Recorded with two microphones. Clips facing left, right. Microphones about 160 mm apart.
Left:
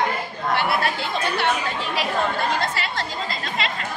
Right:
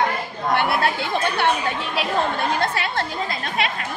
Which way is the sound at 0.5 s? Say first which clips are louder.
Right 2 dB; 55° right (ahead or behind).